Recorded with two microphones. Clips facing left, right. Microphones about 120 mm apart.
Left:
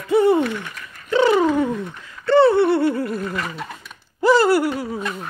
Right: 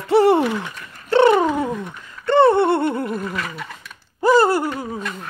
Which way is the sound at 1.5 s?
10° right (ahead or behind).